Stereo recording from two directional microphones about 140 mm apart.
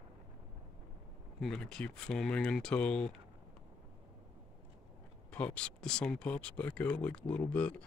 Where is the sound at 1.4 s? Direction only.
5° left (ahead or behind).